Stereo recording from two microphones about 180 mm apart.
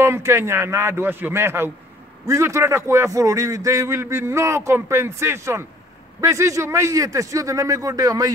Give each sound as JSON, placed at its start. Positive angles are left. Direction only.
{"t": 0.0, "sound": "a man's voice", "side_deg": -15}